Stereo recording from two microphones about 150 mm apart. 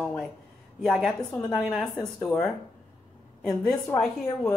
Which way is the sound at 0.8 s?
Centre (ahead or behind).